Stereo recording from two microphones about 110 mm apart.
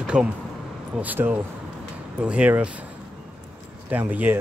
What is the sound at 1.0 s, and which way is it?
Speech, 15° right (ahead or behind).